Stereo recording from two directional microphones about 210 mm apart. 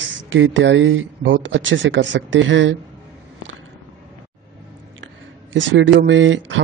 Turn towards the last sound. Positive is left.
turn(degrees=-60)  # may be behind; listen again after turning